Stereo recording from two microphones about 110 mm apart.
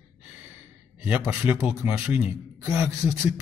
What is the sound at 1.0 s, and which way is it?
Speech, 15° right (ahead or behind).